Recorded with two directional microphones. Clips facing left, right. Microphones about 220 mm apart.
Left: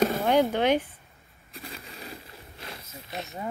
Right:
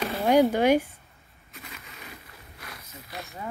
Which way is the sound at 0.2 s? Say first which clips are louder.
Right 3 dB; 10° right (ahead or behind).